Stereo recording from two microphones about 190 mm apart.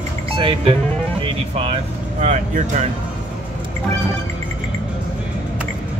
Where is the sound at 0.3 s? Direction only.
30° right (ahead or behind).